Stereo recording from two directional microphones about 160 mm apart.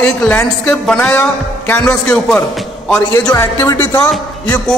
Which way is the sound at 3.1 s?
20° left (ahead or behind).